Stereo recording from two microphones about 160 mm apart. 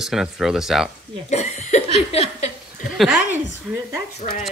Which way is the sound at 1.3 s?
45° left (ahead or behind).